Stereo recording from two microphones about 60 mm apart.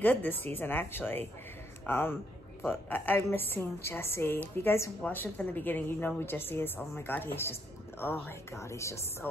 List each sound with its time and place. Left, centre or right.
0.0 s a woman's voice: left
3.2 s a woman's voice: left
5.1 s a woman's voice: left
9.2 s a woman's voice: left